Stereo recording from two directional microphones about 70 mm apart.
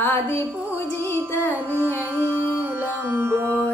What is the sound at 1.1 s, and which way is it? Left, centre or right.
Child singing, left.